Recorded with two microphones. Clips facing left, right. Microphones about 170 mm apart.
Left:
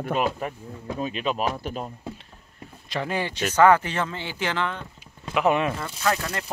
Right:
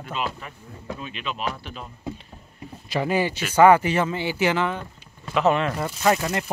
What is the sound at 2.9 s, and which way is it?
Speech, 5° right (ahead or behind).